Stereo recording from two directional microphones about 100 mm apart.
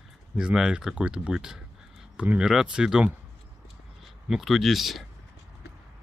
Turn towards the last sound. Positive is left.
turn(degrees=0)  # may be behind; listen again after turning